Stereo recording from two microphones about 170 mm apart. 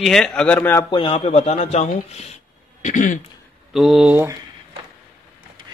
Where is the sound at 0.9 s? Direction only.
30° left (ahead or behind); by 3.1 s 50° left (ahead or behind).